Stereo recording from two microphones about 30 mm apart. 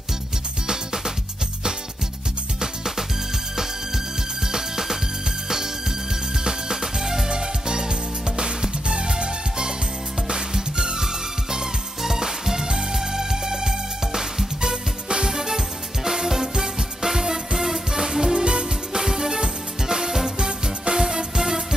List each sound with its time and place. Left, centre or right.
0.7 s music: right
2.6 s music: centre
4.4 s music: centre
15.3 s music: centre
18.4 s music: right
18.9 s music: centre